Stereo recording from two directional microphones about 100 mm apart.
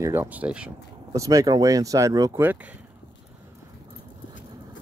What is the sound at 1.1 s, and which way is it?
Speech, 35° right (ahead or behind).